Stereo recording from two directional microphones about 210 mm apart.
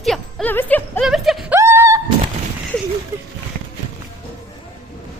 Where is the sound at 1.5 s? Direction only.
15° right (ahead or behind).